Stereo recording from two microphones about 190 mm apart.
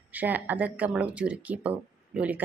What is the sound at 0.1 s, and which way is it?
Speech, 10° right (ahead or behind).